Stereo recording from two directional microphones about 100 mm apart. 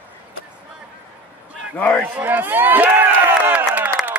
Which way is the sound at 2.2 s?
20° right (ahead or behind).